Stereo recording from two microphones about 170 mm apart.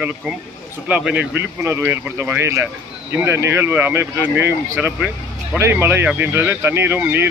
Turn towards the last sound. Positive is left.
turn(degrees=-10)  # may be behind; listen again after turning